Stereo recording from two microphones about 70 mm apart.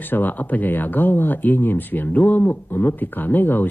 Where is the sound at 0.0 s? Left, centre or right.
Left.